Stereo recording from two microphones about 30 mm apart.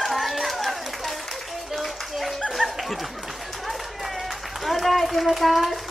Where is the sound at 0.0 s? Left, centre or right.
Centre.